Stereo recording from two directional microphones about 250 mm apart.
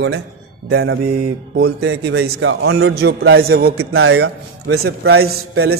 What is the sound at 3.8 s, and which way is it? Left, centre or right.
A man's voice, right.